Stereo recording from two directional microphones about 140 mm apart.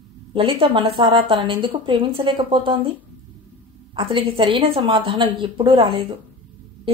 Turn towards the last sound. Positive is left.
turn(degrees=-40)  # may be behind; listen again after turning